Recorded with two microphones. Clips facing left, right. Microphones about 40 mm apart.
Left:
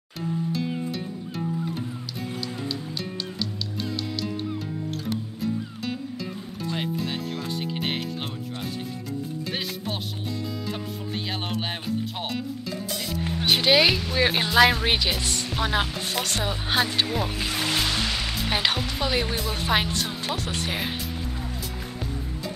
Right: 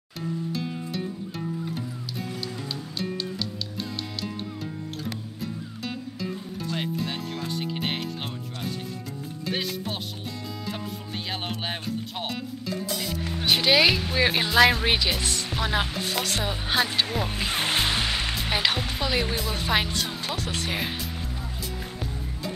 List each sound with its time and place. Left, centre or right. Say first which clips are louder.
0.7 s music: left 2 dB; centre
3.0 s music: right 1 dB; centre
9.5 s music: right 4 dB; centre
11.4 s music: left 2 dB; centre
14.0 s speech: even; centre
17.4 s music: even; right; by 18.5 s centre
18.5 s speech: left 1 dB; centre